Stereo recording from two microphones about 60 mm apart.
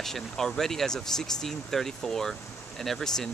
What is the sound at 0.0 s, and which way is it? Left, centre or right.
Speech, centre.